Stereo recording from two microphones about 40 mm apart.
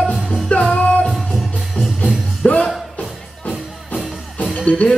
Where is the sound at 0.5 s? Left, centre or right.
Left.